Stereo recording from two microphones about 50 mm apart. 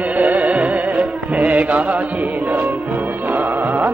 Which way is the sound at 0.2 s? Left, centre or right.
Right.